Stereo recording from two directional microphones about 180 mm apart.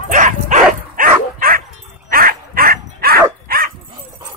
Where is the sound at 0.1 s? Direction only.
45° right (ahead or behind).